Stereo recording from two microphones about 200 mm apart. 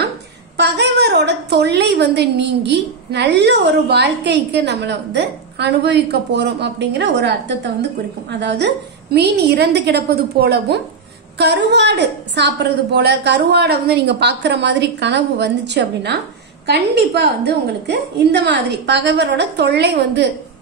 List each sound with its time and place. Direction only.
0.6 s a woman's voice: 60° right (ahead or behind)